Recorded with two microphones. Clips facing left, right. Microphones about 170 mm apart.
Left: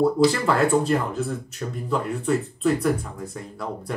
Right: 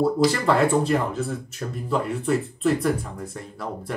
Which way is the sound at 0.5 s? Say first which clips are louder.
Even; centre (ahead or behind).